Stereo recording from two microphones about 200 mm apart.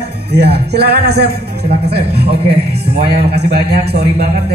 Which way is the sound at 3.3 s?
55° right (ahead or behind).